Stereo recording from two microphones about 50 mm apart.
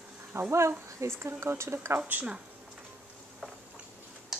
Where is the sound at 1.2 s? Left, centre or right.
Right.